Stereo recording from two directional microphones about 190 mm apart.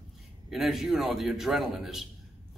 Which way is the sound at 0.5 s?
Centre (ahead or behind).